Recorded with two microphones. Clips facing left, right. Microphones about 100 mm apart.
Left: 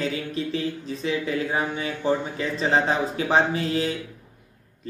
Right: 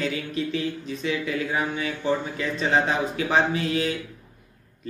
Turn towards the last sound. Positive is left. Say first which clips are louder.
# even
turn(degrees=30)  # may be behind; listen again after turning